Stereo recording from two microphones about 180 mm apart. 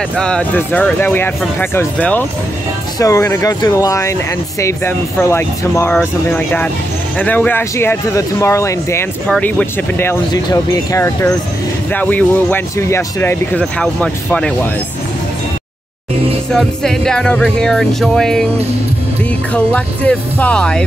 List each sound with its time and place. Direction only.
0.2 s speech: 5° left (ahead or behind)
16.5 s speech: centre (ahead or behind)
19.5 s speech: 5° left (ahead or behind)